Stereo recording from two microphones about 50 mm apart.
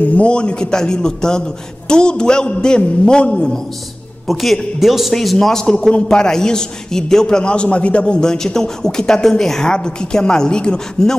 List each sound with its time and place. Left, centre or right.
0.0 s a man's voice: left
4.3 s a man's voice: centre